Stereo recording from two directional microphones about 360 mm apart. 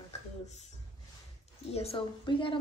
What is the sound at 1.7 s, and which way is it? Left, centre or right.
Speech, centre.